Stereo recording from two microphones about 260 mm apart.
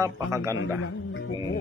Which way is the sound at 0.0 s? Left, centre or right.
Centre.